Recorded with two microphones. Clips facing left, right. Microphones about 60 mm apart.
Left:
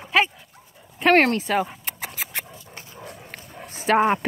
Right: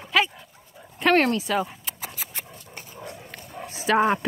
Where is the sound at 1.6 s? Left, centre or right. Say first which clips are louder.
Left 2 dB; left.